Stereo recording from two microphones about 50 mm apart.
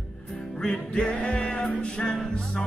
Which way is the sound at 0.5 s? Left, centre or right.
Centre.